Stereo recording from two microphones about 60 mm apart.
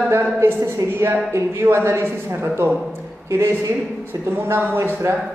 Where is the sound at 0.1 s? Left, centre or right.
Right.